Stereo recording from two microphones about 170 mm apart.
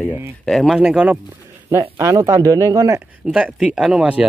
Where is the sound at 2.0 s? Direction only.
20° right (ahead or behind).